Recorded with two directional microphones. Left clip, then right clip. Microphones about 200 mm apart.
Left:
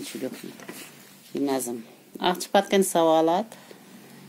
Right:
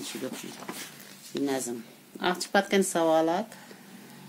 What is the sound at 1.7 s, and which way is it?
Speech, 30° left (ahead or behind).